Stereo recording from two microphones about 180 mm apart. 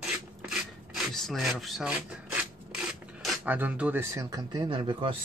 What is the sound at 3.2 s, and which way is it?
Speech, 10° right (ahead or behind).